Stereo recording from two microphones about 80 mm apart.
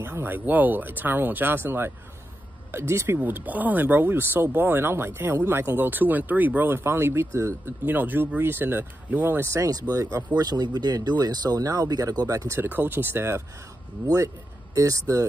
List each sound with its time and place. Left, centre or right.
0.0 s speech: right
3.2 s speech: right
7.8 s speech: right
12.5 s speech: right
14.0 s speech: right